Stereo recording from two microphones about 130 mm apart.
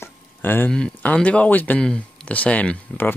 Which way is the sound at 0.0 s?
15° left (ahead or behind).